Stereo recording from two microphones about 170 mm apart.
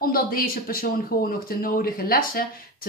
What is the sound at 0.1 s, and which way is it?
Speech, 60° left (ahead or behind).